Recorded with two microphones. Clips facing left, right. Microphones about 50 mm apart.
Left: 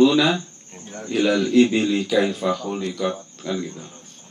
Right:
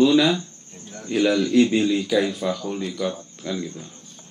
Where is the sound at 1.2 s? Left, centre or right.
Left.